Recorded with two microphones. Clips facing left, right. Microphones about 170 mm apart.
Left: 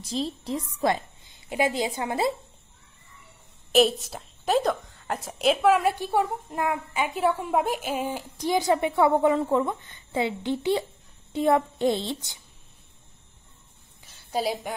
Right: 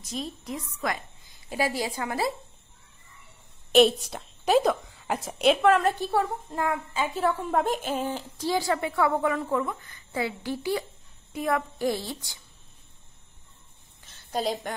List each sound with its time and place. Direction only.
0.0 s a woman's voice: 30° left (ahead or behind)
3.7 s a woman's voice: centre (ahead or behind); by 12.4 s 20° left (ahead or behind)
14.0 s a sound: 10° left (ahead or behind)